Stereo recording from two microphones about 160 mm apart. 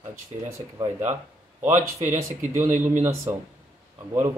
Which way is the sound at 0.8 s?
15° right (ahead or behind).